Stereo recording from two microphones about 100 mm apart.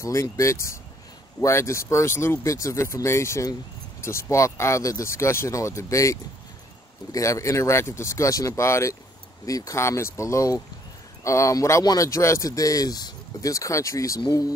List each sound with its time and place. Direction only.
0.0 s speech: 30° left (ahead or behind)